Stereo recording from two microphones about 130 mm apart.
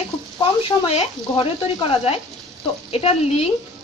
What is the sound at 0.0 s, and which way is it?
Speech, 45° left (ahead or behind).